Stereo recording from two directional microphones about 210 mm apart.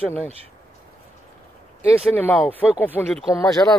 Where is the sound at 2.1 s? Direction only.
5° left (ahead or behind).